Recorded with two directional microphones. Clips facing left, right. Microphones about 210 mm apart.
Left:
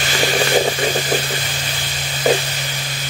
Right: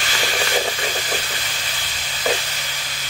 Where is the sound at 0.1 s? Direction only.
35° left (ahead or behind).